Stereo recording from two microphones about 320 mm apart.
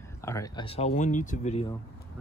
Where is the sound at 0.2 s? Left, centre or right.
Centre.